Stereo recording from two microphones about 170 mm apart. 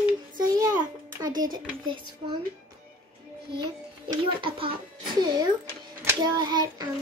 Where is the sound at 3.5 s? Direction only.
25° right (ahead or behind).